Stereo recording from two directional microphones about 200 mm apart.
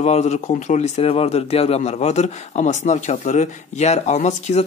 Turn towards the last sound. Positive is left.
turn(degrees=35)  # may be behind; listen again after turning